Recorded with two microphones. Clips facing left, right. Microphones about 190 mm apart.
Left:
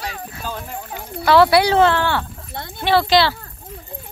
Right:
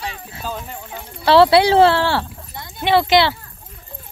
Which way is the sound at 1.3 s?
25° right (ahead or behind).